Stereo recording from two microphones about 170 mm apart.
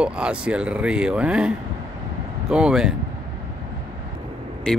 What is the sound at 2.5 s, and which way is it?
Speech, 5° right (ahead or behind).